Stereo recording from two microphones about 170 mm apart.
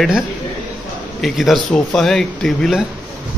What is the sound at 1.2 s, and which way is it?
Speech, centre (ahead or behind).